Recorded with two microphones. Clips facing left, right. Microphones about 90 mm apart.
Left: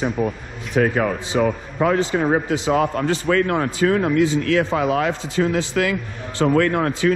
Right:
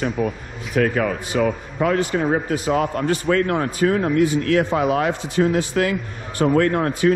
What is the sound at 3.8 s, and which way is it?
Speech, 70° left (ahead or behind).